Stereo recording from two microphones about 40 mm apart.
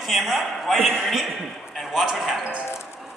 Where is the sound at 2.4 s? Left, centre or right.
Right.